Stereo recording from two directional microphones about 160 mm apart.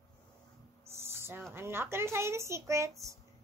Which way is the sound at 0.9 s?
15° right (ahead or behind).